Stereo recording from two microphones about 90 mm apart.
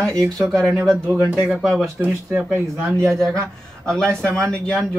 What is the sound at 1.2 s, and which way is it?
Speech, 15° right (ahead or behind).